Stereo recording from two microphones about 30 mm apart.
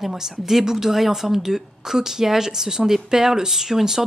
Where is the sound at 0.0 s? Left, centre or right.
Centre.